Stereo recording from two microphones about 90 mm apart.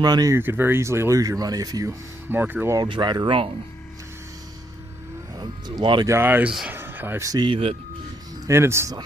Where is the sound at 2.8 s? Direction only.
55° right (ahead or behind).